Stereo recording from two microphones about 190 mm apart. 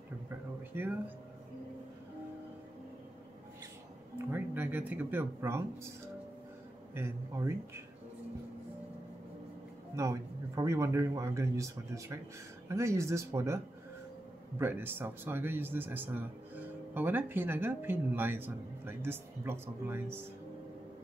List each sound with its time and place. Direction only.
0.7 s speech: 10° right (ahead or behind)
4.3 s speech: 10° right (ahead or behind)
6.9 s speech: 15° right (ahead or behind)
9.9 s speech: 15° right (ahead or behind)
14.6 s speech: 10° right (ahead or behind)